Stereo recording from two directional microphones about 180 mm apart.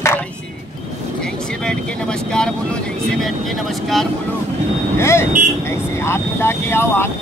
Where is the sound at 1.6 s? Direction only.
5° left (ahead or behind).